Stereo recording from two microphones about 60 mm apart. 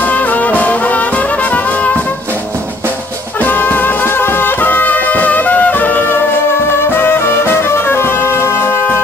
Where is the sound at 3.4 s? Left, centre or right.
Left.